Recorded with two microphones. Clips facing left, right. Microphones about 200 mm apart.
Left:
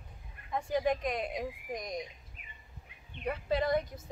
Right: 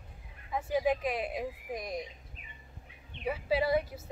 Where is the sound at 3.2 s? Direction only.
5° right (ahead or behind).